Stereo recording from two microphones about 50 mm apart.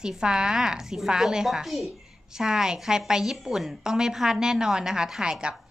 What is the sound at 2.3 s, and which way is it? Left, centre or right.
A woman's voice, centre.